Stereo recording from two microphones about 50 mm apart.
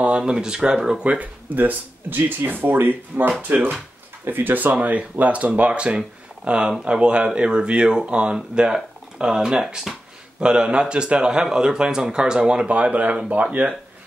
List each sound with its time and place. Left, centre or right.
0.2 s speech: centre